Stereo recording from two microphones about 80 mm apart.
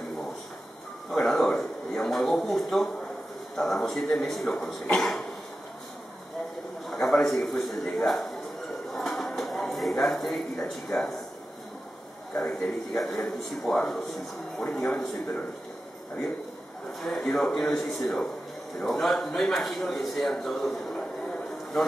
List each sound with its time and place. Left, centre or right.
1.1 s a sound: centre
3.5 s speech: centre
6.9 s a sound: centre
10.9 s speech: centre
12.4 s speech: centre
14.6 s speech: centre
15.0 s speech: centre
16.8 s a man's voice: centre